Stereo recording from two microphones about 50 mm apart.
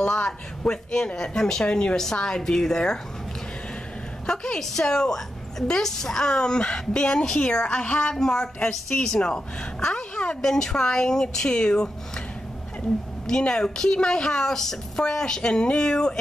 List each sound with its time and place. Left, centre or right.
0.1 s a woman's voice: centre
4.3 s a woman's voice: centre
13.3 s a woman's voice: centre